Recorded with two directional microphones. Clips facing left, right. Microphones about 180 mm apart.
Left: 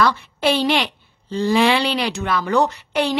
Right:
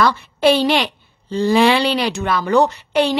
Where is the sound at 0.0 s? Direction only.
35° right (ahead or behind).